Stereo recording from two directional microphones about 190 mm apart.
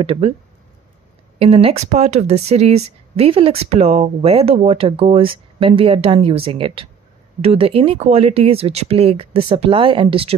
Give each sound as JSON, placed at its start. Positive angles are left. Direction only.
{"t": 0.0, "sound": "speech", "side_deg": -30}
{"t": 1.4, "sound": "speech", "side_deg": -30}